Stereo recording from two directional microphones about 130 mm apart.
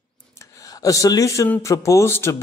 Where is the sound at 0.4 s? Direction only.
25° left (ahead or behind).